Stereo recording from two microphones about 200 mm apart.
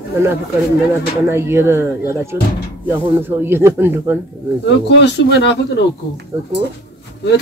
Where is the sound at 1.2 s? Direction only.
15° right (ahead or behind).